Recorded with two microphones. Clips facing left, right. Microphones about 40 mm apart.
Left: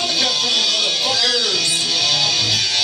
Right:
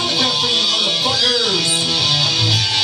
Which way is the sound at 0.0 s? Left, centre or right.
Right.